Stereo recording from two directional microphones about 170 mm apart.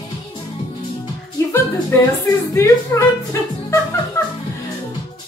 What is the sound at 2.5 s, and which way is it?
Speech, 15° left (ahead or behind).